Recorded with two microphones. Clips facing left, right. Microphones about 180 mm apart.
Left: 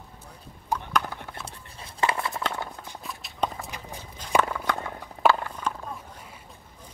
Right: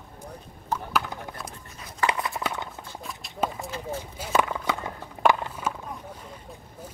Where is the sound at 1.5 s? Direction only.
30° left (ahead or behind).